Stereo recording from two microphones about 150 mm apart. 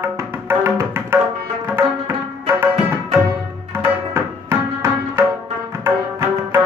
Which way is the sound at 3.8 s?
20° right (ahead or behind).